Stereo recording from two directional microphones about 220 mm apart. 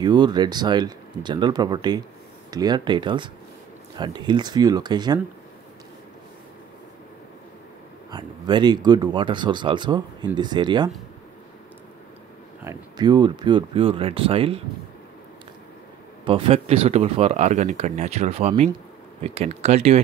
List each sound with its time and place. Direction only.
0.0 s speech: 20° right (ahead or behind)
8.1 s speech: 20° right (ahead or behind)
12.6 s speech: 20° right (ahead or behind)
16.3 s speech: 25° right (ahead or behind)